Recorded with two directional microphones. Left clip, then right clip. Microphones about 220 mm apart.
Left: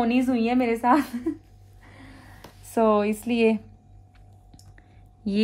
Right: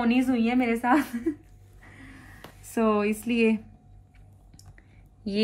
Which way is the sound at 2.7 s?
40° left (ahead or behind).